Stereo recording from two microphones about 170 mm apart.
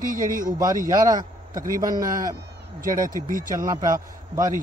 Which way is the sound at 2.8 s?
50° right (ahead or behind).